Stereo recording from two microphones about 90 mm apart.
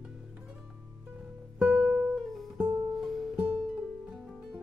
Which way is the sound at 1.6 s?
15° right (ahead or behind).